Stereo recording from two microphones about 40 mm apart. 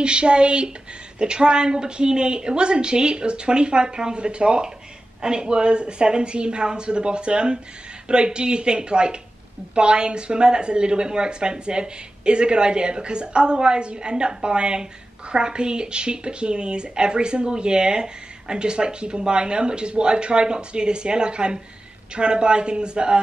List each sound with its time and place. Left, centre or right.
0.0 s speech: right